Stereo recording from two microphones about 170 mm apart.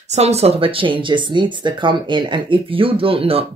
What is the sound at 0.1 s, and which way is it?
Speech, 40° right (ahead or behind).